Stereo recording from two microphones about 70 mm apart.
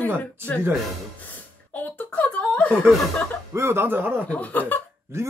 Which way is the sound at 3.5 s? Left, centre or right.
Right.